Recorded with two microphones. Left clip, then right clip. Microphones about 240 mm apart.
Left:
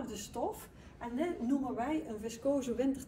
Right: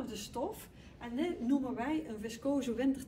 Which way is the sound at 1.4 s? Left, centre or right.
Centre.